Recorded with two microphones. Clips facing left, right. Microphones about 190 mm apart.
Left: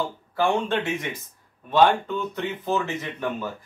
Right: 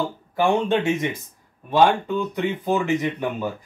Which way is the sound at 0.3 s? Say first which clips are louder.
Right 4 dB; 15° right (ahead or behind).